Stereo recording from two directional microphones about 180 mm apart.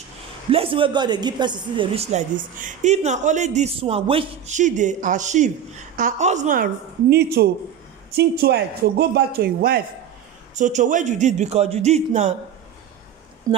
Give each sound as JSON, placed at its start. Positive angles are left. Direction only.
{"t": 0.5, "sound": "a woman's voice", "side_deg": -30}
{"t": 2.1, "sound": "speech", "side_deg": -45}
{"t": 4.6, "sound": "a woman's voice", "side_deg": -45}
{"t": 10.5, "sound": "speech", "side_deg": -45}
{"t": 13.5, "sound": "speech", "side_deg": -20}